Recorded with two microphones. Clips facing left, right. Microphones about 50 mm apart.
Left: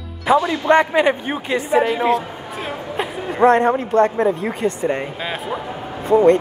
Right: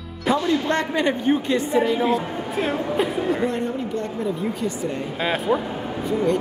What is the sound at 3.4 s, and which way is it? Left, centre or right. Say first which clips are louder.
Speech: left 10 dB; left.